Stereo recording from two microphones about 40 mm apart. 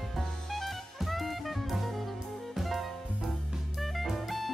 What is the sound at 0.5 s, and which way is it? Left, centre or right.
Music, centre.